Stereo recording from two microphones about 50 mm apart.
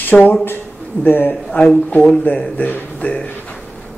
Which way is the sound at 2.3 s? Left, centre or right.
Left.